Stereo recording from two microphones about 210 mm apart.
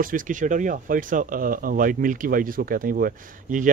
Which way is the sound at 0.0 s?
40° right (ahead or behind).